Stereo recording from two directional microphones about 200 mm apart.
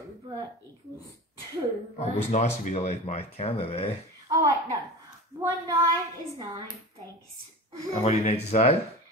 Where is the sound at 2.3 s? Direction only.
35° left (ahead or behind).